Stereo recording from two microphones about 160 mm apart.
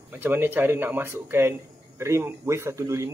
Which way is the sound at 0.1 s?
10° right (ahead or behind).